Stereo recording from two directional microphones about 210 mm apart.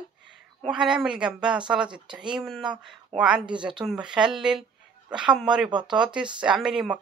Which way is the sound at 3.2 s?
5° right (ahead or behind).